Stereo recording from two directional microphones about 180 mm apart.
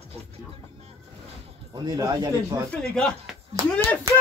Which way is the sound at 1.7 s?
20° right (ahead or behind).